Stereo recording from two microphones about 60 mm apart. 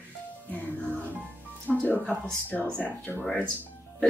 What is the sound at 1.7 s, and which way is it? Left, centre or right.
Speech, centre.